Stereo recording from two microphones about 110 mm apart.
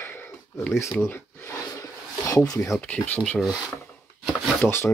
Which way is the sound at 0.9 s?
15° left (ahead or behind).